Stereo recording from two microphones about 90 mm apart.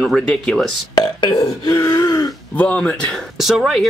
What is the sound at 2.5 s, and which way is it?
Speech, 15° left (ahead or behind).